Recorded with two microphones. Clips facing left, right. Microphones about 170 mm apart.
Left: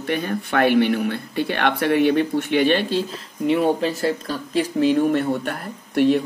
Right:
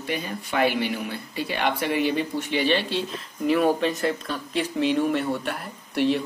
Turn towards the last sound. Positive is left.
turn(degrees=50)  # may be behind; listen again after turning